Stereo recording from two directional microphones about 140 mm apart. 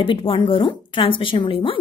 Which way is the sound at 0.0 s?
40° left (ahead or behind).